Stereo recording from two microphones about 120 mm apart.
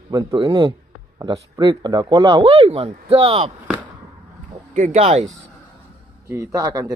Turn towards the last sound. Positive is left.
turn(degrees=-30)  # may be behind; listen again after turning